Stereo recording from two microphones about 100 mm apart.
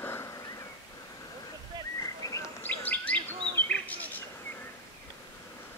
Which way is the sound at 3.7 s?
15° left (ahead or behind).